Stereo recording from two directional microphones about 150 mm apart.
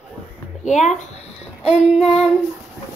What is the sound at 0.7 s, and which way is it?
Speech, 50° left (ahead or behind).